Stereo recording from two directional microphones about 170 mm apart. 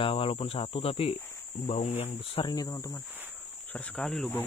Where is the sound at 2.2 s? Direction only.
30° left (ahead or behind).